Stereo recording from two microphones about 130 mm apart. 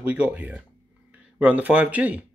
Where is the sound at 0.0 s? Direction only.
10° right (ahead or behind).